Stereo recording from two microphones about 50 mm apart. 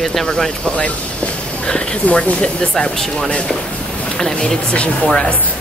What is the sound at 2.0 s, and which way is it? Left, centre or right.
Speech, left.